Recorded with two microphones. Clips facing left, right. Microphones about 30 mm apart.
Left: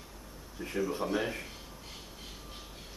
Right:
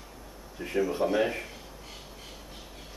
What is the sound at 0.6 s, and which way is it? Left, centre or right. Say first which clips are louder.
Speech: right 6 dB; centre.